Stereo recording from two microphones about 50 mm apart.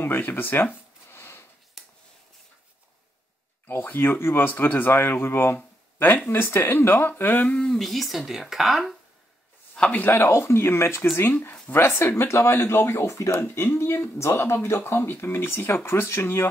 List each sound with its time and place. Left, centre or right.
0.0 s speech: left
1.1 s a sound: left
1.8 s a sound: centre
3.6 s speech: left
7.5 s speech: centre
9.8 s a man's voice: left
10.1 s speech: left
13.4 s speech: left